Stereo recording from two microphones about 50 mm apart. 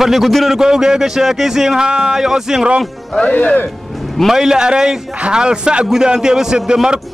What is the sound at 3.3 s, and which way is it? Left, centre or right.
Speech, left.